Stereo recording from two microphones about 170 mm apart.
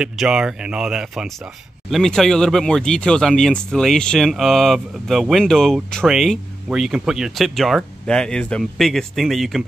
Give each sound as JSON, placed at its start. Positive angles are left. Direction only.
{"t": 0.0, "sound": "speech", "side_deg": -5}